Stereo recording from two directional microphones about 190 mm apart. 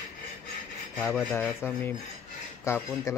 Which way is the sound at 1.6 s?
10° left (ahead or behind).